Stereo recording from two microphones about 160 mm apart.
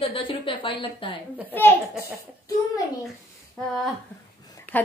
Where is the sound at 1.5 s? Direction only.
15° left (ahead or behind).